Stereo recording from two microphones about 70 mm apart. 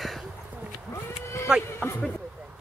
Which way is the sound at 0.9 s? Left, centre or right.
Left.